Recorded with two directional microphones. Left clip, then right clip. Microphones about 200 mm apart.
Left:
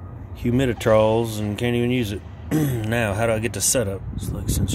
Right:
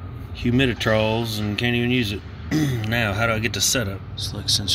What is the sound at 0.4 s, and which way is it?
Speech, 10° left (ahead or behind).